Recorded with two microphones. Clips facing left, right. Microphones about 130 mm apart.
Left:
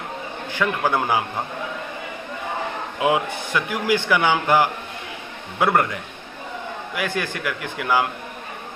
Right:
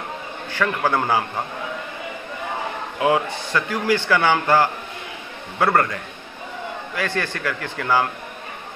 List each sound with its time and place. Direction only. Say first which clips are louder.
0.5 s speech: right 1 dB; 15° left (ahead or behind)
3.0 s speech: right 1 dB; 15° left (ahead or behind)
7.0 s speech: right 1 dB; 15° left (ahead or behind)